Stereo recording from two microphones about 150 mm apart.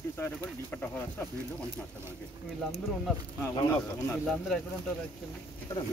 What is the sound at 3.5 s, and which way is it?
Speech, 30° left (ahead or behind).